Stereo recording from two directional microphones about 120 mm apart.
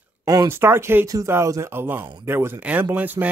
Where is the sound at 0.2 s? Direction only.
30° right (ahead or behind).